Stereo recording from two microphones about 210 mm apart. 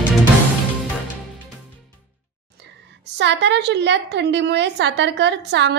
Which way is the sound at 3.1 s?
55° right (ahead or behind).